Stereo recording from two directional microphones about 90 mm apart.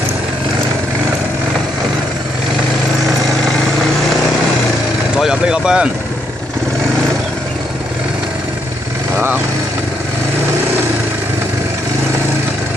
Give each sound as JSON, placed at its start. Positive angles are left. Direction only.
{"t": 5.2, "sound": "speech", "side_deg": -10}